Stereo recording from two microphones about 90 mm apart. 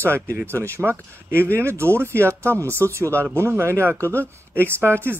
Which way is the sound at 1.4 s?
30° right (ahead or behind).